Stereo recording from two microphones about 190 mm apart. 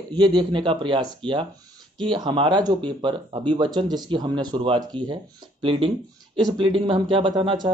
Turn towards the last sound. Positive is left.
turn(degrees=-25)  # may be behind; listen again after turning